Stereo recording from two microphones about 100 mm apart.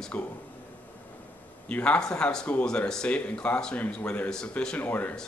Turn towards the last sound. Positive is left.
turn(degrees=15)  # may be behind; listen again after turning